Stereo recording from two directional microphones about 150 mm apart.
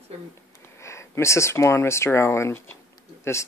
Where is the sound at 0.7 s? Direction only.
20° left (ahead or behind).